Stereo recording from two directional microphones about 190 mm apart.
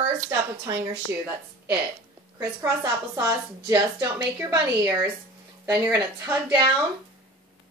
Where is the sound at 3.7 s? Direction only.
25° right (ahead or behind).